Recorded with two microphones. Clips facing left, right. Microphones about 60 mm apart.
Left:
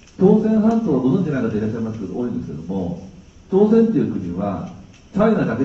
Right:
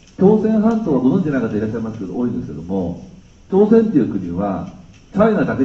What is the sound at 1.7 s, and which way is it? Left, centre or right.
Speech, right.